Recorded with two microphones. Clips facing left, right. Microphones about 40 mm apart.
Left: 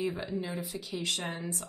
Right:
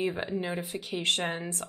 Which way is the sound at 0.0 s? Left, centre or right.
Right.